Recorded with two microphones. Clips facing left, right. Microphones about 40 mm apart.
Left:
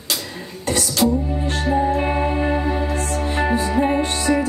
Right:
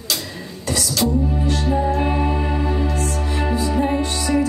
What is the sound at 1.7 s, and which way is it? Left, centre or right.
Music, left.